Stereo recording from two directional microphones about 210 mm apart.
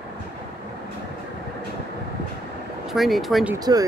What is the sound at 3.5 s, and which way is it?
Speech, 15° right (ahead or behind).